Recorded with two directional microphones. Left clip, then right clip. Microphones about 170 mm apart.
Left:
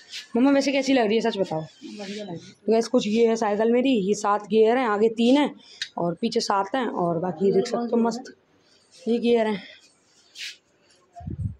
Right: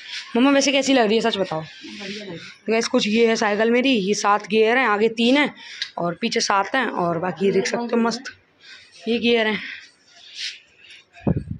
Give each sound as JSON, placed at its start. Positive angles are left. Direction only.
{"t": 0.3, "sound": "speech", "side_deg": 0}
{"t": 2.3, "sound": "speech", "side_deg": 25}
{"t": 2.8, "sound": "speech", "side_deg": 10}